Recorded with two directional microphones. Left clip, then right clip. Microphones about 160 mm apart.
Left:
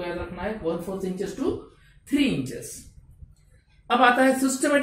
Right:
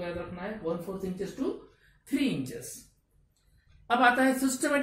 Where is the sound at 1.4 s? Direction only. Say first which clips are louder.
Left 6 dB; 10° right (ahead or behind).